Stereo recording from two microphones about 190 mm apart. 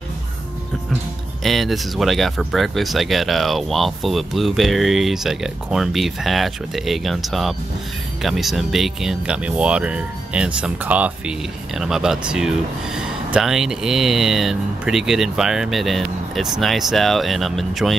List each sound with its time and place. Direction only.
1.4 s speech: centre (ahead or behind)